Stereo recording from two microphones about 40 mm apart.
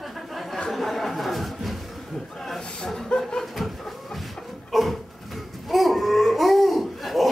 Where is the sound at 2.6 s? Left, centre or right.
Left.